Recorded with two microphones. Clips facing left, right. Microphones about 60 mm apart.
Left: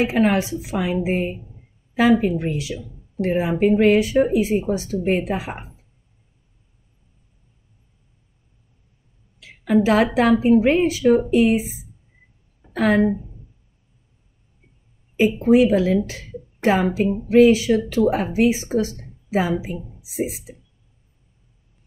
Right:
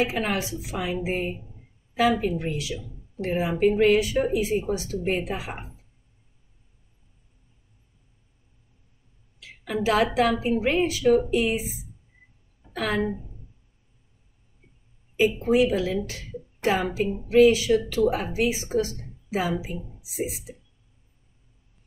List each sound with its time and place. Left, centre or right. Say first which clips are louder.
0.2 s speech: left 9 dB; left
9.7 s speech: left 6 dB; left
12.7 s a woman's voice: left 8 dB; left
15.1 s speech: left 5 dB; left